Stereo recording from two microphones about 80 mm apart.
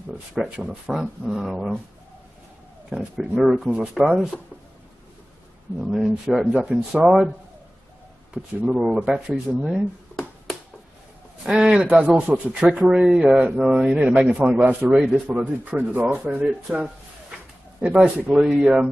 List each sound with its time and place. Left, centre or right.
0.4 s speech: centre
2.9 s speech: centre
5.8 s speech: centre
8.5 s speech: centre
9.7 s a sound: centre
11.4 s speech: centre
15.0 s speech: centre
15.2 s speech: right
18.0 s speech: centre